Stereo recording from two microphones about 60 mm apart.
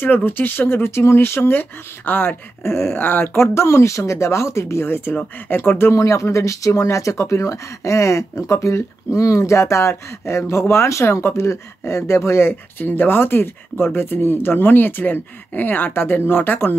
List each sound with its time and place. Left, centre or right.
0.0 s speech: left
1.6 s speech: left
2.6 s speech: left
3.4 s speech: left
5.9 s speech: left